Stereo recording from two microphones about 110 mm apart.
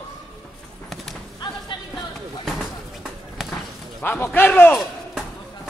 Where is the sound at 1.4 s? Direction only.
40° left (ahead or behind).